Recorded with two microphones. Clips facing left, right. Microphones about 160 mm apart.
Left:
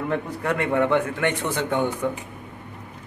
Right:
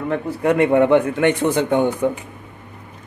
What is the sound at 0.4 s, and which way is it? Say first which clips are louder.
A man's voice: right 9 dB; 20° right (ahead or behind).